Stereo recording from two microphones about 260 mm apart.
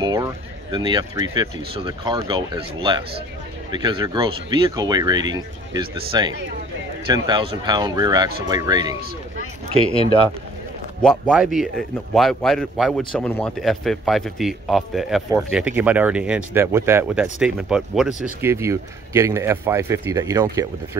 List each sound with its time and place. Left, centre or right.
0.0 s speech: centre
11.0 s a man's voice: centre